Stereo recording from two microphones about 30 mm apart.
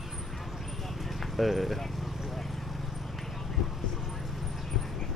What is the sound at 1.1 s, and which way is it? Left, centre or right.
Speech, centre.